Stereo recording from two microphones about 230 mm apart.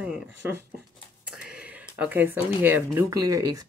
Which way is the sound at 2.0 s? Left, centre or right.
Centre.